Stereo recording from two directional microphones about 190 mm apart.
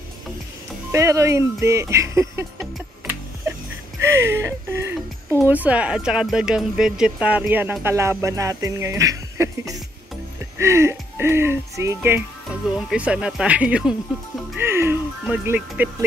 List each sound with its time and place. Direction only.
0.9 s speech: 15° right (ahead or behind)
14.6 s music: 15° right (ahead or behind)